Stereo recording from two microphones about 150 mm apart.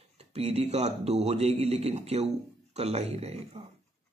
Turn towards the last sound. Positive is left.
turn(degrees=-45)  # may be behind; listen again after turning